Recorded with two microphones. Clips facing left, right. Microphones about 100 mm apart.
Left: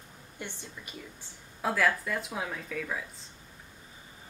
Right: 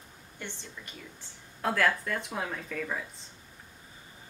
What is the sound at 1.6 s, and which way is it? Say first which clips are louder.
Speech: even; 5° left (ahead or behind).